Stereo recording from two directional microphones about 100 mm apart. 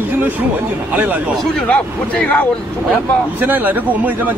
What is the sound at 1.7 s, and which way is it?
Speech, 15° left (ahead or behind).